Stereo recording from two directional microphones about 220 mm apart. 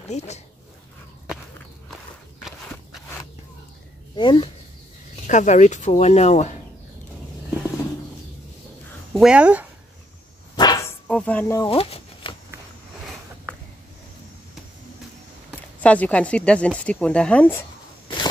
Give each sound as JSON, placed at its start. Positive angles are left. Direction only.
{"t": 0.1, "sound": "speech", "side_deg": 30}
{"t": 2.4, "sound": "walk", "side_deg": 0}
{"t": 4.1, "sound": "speech", "side_deg": 20}
{"t": 5.2, "sound": "speech", "side_deg": 35}
{"t": 9.1, "sound": "speech", "side_deg": -5}
{"t": 10.5, "sound": "dog", "side_deg": 20}
{"t": 11.7, "sound": "a sound", "side_deg": 25}
{"t": 15.8, "sound": "speech", "side_deg": 5}